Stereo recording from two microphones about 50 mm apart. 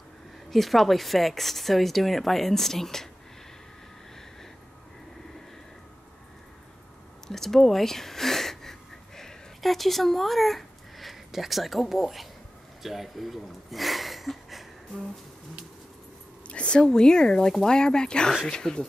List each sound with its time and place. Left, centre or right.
0.5 s speech: centre
7.2 s a sound: centre
12.8 s speech: centre
16.4 s speech: left